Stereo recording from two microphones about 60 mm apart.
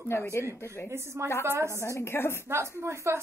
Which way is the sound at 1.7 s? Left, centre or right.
Left.